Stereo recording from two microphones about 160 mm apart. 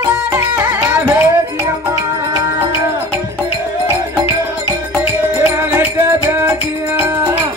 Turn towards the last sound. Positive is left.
turn(degrees=-15)  # may be behind; listen again after turning